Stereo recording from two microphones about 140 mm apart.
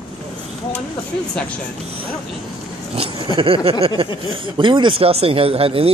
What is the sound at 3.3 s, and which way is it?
Speech, 40° right (ahead or behind).